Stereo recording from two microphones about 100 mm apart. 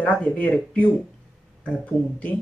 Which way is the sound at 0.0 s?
15° left (ahead or behind).